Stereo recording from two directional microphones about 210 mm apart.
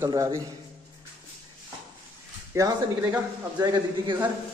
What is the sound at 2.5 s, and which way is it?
A man's voice, 15° right (ahead or behind).